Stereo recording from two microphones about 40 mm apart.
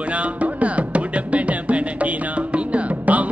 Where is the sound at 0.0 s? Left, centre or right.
Right.